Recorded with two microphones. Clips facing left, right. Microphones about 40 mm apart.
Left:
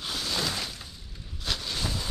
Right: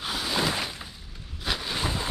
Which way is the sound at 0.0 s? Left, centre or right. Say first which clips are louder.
Right 4 dB; centre.